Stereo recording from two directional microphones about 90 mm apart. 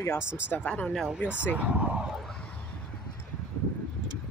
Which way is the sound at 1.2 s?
15° right (ahead or behind).